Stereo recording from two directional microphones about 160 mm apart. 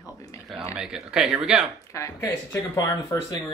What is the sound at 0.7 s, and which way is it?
Speech, 5° right (ahead or behind).